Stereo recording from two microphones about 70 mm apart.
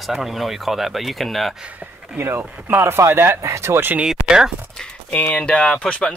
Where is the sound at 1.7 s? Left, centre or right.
Right.